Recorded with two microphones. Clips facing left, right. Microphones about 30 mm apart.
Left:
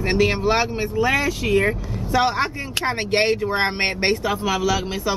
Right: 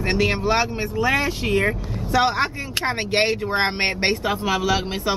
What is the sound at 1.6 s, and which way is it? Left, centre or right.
Speech, right.